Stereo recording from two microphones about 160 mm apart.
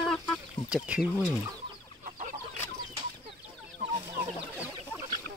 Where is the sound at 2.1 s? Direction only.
50° right (ahead or behind).